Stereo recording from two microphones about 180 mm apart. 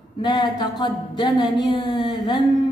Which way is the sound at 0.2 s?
25° left (ahead or behind).